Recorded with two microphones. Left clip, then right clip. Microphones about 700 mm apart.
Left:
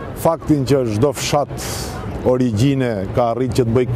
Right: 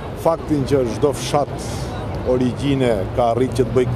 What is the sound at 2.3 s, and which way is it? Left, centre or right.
Speech, left.